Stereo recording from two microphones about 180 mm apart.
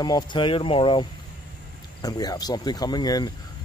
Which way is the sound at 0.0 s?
25° left (ahead or behind).